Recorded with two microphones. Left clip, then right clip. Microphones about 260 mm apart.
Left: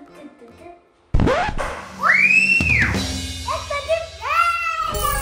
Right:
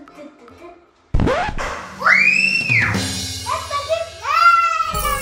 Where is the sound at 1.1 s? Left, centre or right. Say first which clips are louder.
Even; centre.